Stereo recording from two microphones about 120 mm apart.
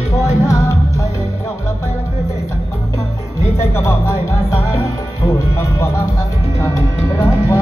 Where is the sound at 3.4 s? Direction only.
25° left (ahead or behind).